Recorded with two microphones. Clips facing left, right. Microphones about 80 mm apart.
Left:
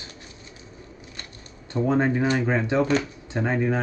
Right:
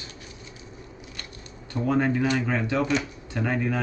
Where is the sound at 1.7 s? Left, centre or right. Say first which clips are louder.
Left 2 dB; left.